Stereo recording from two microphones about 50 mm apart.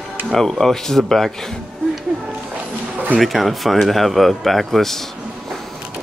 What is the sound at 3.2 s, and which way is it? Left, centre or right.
Speech, centre.